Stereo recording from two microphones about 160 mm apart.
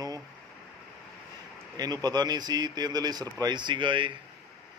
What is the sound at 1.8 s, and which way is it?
Speech, 25° right (ahead or behind).